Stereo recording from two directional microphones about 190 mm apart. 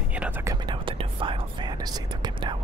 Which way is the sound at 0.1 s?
10° right (ahead or behind).